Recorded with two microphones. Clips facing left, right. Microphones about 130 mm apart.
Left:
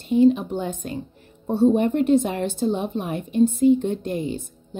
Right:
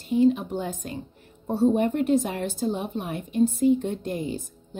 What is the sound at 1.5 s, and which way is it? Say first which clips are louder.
A woman's voice: left 3 dB; 25° left (ahead or behind).